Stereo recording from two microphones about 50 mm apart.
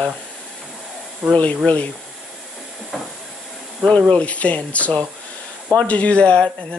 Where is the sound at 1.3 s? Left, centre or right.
Left.